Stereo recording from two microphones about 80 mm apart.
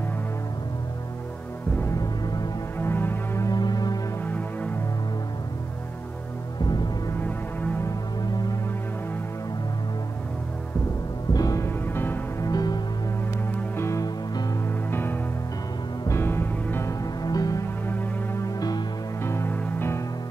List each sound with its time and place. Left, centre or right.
2.0 s music: left
2.8 s music: left
3.4 s music: left
4.2 s music: left
6.6 s music: left
7.2 s music: left
8.2 s music: left
11.3 s music: left
11.6 s music: left
12.4 s music: left
13.7 s music: left
17.0 s music: left
17.8 s music: left